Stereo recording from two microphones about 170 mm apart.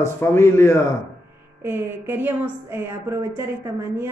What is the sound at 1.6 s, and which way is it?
A woman's voice, 10° right (ahead or behind).